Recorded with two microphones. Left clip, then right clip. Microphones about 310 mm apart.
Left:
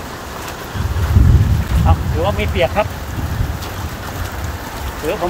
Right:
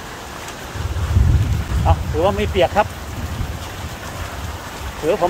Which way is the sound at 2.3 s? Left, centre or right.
Right.